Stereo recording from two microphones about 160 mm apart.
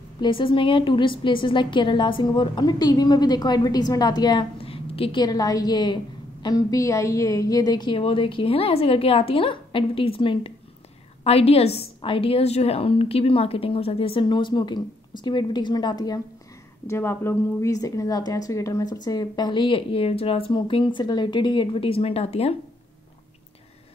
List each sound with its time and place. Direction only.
0.2 s a woman's voice: 30° left (ahead or behind)
16.8 s a woman's voice: 15° left (ahead or behind); by 22.6 s 40° left (ahead or behind)